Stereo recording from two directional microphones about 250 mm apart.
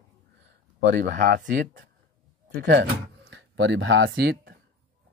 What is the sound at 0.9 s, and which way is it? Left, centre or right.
Speech, right.